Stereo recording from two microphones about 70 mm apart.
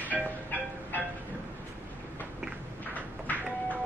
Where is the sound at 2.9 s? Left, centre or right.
Left.